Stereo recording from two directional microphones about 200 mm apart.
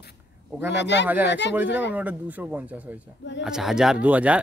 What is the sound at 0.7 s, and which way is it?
Speech, 60° left (ahead or behind).